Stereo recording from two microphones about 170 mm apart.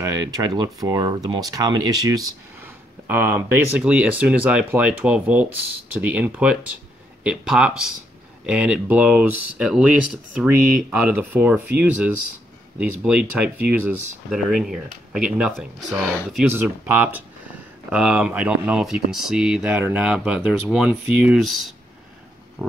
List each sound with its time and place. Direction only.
0.0 s speech: 20° right (ahead or behind)
3.1 s speech: 10° right (ahead or behind)
16.5 s speech: 10° right (ahead or behind)